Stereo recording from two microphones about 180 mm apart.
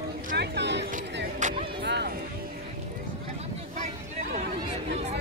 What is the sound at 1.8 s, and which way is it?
Music, 70° right (ahead or behind).